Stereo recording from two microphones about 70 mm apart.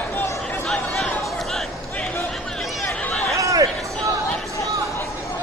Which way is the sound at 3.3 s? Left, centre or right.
Right.